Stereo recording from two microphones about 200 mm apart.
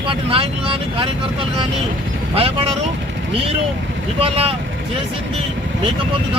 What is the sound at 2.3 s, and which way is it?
Speech, 30° right (ahead or behind).